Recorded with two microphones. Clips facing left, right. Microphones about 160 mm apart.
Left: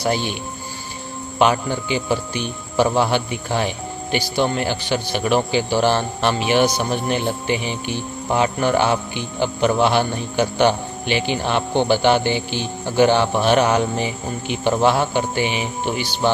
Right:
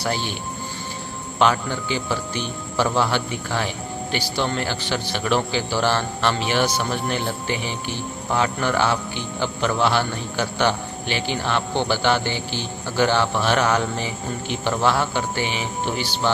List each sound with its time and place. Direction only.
0.0 s speech: 15° left (ahead or behind)
1.4 s speech: 15° left (ahead or behind)